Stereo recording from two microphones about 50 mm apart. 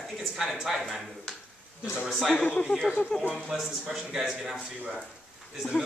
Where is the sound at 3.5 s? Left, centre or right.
Centre.